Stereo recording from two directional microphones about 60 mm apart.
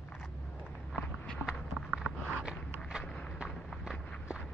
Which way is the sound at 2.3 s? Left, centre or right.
Centre.